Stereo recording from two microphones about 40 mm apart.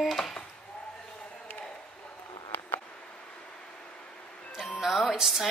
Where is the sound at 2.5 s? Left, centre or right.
Left.